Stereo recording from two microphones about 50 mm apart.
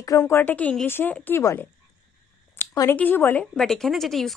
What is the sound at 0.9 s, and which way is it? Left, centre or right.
Speech, left.